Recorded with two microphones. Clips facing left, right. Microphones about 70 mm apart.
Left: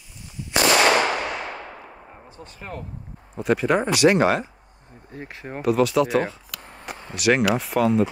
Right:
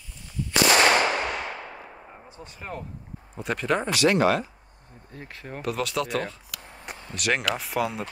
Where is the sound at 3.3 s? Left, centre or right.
Centre; by 5.6 s left.